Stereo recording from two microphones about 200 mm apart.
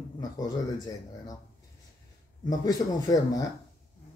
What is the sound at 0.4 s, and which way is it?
Speech, 20° left (ahead or behind).